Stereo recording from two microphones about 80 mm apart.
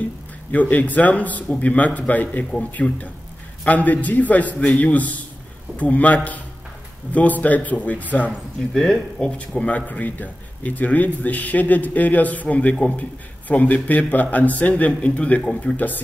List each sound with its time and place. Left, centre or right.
0.5 s a man's voice: centre
8.7 s a man's voice: centre